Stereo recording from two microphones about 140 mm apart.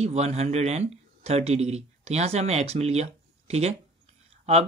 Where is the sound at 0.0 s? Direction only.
50° right (ahead or behind).